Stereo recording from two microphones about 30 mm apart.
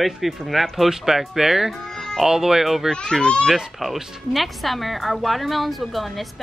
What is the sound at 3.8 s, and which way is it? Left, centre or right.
Speech, centre.